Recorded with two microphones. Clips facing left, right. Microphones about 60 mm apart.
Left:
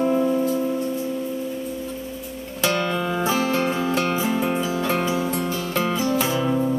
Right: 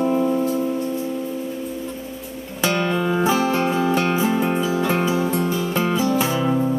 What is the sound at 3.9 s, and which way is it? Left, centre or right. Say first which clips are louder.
Music: right 3 dB; right.